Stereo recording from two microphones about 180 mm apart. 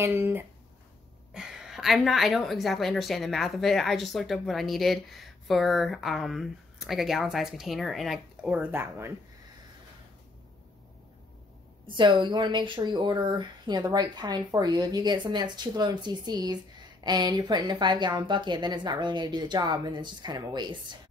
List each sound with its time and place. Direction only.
0.0 s a woman's voice: 10° right (ahead or behind)
11.8 s speech: 25° right (ahead or behind)